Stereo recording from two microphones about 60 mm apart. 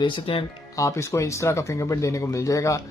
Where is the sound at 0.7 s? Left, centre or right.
Left.